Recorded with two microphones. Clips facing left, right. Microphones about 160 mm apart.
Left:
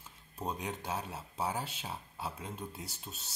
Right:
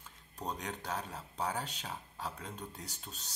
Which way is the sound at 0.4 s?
10° left (ahead or behind).